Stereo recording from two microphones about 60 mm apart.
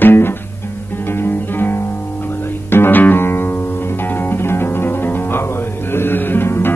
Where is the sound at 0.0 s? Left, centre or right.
Left.